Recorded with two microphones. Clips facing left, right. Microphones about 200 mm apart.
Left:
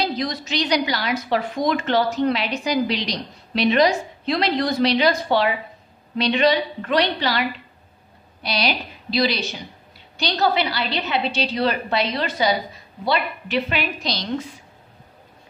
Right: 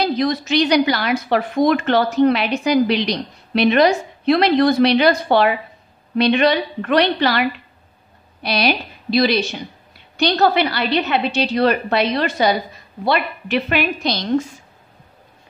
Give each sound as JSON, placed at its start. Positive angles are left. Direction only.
{"t": 0.0, "sound": "a woman's voice", "side_deg": -60}